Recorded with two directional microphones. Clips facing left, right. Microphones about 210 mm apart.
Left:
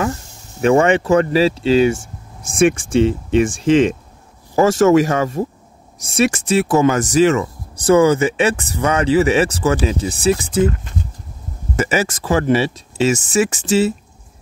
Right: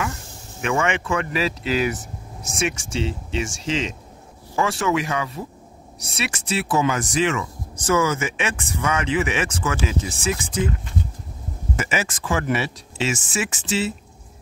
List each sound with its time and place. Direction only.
0.0 s speech: 35° left (ahead or behind)
2.6 s speech: 55° left (ahead or behind)
4.6 s speech: 45° left (ahead or behind)
11.7 s speech: 40° left (ahead or behind)
12.9 s speech: 45° left (ahead or behind)